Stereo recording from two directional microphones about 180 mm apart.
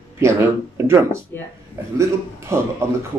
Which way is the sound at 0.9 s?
15° right (ahead or behind).